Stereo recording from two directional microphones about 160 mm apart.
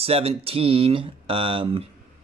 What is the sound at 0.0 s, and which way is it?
Speech, 35° right (ahead or behind).